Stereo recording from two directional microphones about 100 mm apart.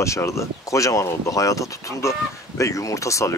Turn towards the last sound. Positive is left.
turn(degrees=30)  # may be behind; listen again after turning